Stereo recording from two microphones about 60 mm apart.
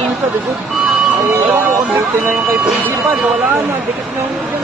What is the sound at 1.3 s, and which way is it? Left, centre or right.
Speech, right.